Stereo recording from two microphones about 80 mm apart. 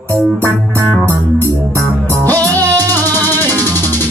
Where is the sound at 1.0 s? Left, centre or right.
Right.